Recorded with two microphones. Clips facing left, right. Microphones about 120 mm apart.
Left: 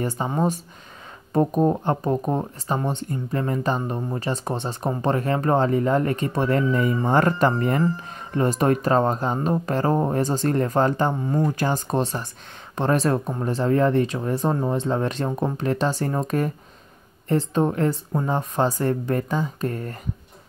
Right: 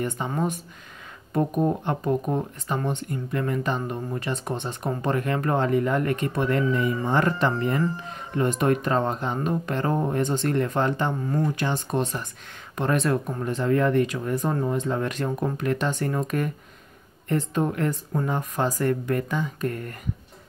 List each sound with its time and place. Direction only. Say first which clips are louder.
0.2 s speech: left 4 dB; 35° left (ahead or behind)